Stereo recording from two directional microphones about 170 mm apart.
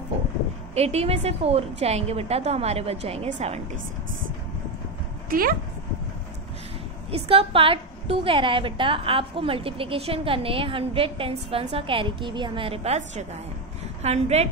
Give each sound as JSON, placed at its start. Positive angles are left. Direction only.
{"t": 0.7, "sound": "a woman's voice", "side_deg": -40}
{"t": 5.3, "sound": "speech", "side_deg": -55}
{"t": 7.1, "sound": "a woman's voice", "side_deg": -35}